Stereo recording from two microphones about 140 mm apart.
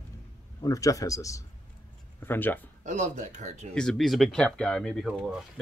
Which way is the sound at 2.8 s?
60° right (ahead or behind).